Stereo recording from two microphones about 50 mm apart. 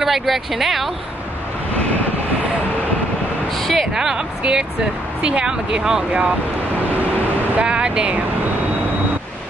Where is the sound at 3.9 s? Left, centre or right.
Centre.